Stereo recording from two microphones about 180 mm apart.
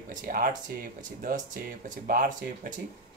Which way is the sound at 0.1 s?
50° right (ahead or behind).